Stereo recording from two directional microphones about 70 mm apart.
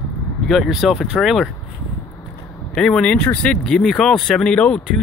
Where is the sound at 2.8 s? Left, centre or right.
Centre.